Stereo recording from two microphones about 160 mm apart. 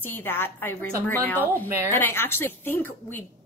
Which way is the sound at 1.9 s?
15° left (ahead or behind).